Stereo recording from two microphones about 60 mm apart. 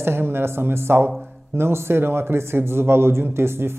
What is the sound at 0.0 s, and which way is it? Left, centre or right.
A man's voice, right.